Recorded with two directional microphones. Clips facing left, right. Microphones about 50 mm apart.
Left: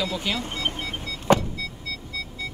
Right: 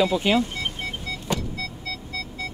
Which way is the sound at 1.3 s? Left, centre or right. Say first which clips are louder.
Left 9 dB; left.